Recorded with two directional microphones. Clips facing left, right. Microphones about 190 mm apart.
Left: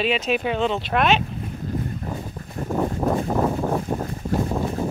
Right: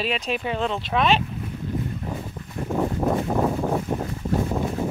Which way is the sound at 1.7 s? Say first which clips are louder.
Left 1 dB; 40° left (ahead or behind).